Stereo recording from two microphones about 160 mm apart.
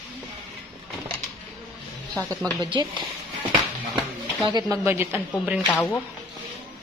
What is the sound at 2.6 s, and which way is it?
Speech, 30° right (ahead or behind).